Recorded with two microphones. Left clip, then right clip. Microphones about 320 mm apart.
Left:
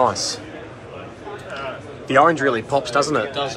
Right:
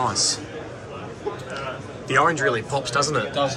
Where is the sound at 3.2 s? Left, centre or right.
Centre.